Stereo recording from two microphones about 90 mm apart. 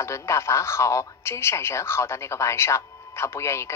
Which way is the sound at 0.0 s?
35° left (ahead or behind).